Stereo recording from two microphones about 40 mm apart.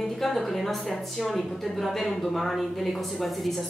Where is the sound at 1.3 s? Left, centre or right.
Centre.